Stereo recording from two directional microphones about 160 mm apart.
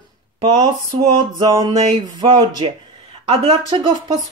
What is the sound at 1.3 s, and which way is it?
Speech, 25° right (ahead or behind).